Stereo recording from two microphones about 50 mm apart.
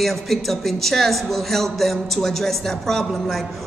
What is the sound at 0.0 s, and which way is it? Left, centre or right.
A man's voice, centre.